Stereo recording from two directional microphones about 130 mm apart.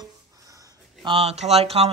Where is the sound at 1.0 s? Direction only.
50° right (ahead or behind).